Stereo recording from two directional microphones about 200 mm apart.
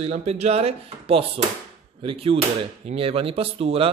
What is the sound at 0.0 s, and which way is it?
Speech, 30° right (ahead or behind).